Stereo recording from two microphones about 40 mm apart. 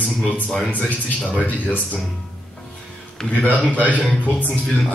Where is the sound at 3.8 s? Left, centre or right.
Left.